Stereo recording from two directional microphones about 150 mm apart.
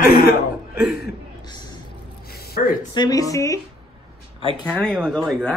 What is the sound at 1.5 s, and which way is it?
Vehicle, 30° left (ahead or behind).